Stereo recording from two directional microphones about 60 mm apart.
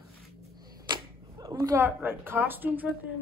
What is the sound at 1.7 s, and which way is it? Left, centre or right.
A woman's voice, right.